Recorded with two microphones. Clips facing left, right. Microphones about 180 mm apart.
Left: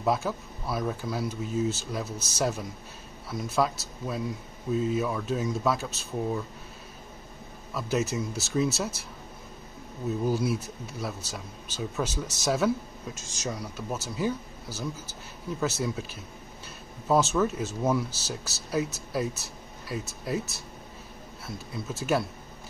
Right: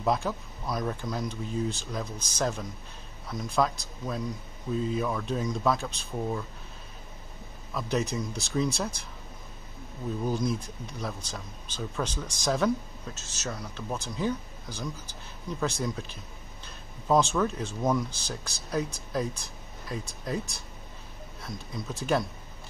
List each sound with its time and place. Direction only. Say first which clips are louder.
0.0 s speech: left 1 dB; 5° left (ahead or behind)
7.7 s speech: left 1 dB; 5° left (ahead or behind)
10.0 s speech: left 2 dB; 5° left (ahead or behind)